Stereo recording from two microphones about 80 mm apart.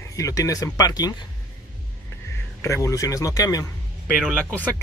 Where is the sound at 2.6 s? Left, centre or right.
Left.